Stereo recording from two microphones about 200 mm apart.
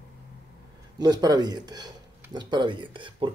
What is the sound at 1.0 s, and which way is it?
Speech, 20° right (ahead or behind).